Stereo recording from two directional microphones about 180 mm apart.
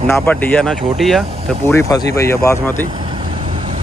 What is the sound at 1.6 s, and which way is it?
Speech, 15° left (ahead or behind).